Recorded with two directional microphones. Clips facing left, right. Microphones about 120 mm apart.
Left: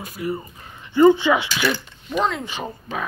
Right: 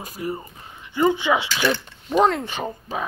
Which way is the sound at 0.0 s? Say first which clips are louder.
Left 2 dB; 35° right (ahead or behind).